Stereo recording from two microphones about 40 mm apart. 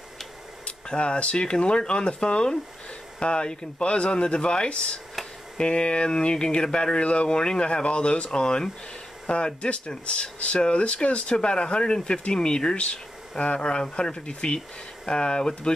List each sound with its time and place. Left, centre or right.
0.7 s speech: left